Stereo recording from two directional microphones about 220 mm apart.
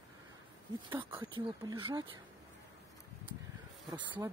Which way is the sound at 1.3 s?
20° right (ahead or behind).